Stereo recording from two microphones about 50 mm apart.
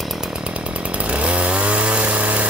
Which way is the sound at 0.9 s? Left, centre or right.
Right.